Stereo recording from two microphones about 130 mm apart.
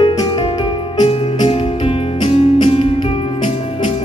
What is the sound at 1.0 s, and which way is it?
Music, 50° left (ahead or behind).